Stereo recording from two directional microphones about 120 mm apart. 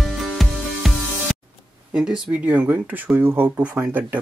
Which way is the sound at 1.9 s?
5° right (ahead or behind).